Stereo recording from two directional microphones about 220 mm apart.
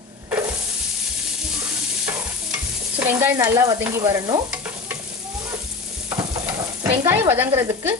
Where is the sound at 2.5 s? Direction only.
10° right (ahead or behind).